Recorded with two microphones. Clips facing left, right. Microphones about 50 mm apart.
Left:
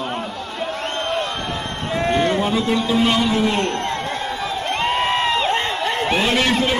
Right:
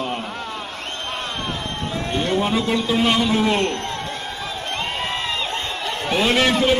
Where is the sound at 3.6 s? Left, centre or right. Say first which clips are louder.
Left 2 dB; left.